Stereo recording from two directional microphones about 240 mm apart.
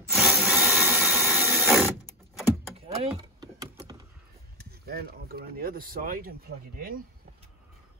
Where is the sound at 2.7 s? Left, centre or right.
Right.